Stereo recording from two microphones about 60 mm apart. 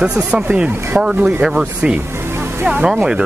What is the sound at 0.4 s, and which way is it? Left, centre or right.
Speech, right.